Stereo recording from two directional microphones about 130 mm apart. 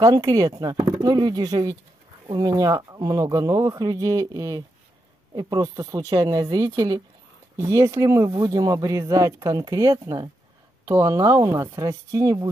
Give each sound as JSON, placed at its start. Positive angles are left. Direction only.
{"t": 0.0, "sound": "speech", "side_deg": -30}